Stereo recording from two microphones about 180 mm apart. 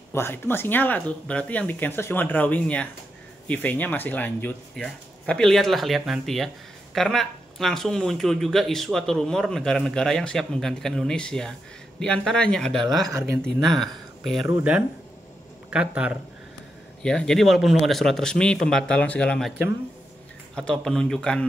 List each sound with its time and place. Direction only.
0.1 s speech: 15° left (ahead or behind); by 16.2 s 5° right (ahead or behind)
17.0 s speech: 5° left (ahead or behind)
20.5 s speech: 5° left (ahead or behind)